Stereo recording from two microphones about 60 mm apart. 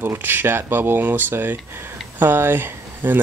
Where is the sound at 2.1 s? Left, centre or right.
Right.